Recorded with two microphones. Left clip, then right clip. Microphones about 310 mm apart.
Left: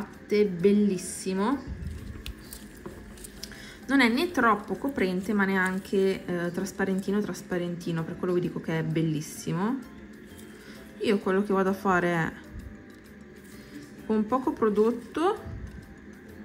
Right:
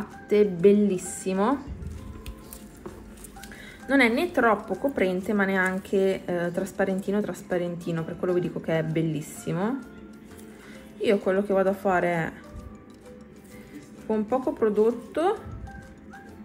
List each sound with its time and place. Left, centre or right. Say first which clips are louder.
0.3 s a woman's voice: right 4 dB; centre
3.9 s a woman's voice: right 2 dB; centre
11.0 s speech: right 3 dB; centre
14.0 s speech: right 1 dB; centre